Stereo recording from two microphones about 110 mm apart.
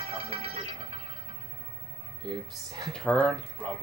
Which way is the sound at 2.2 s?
35° right (ahead or behind).